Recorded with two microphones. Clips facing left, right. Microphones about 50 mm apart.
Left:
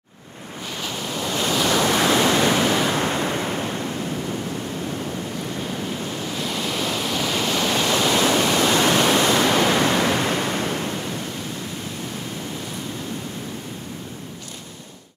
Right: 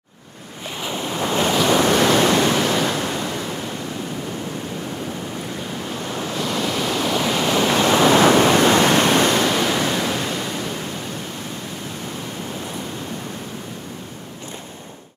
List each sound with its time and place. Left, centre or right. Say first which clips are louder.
0.7 s waves: right 4 dB; right
1.7 s waves: right 2 dB; centre
2.4 s waves: even; centre
3.0 s waves: left 2 dB; left
6.8 s waterfall: right 3 dB; centre
7.4 s waves: right 5 dB; centre
9.4 s waves: left 1 dB; centre
10.0 s waves: left 2 dB; left